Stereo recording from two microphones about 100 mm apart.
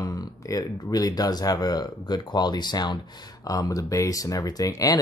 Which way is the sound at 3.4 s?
35° left (ahead or behind).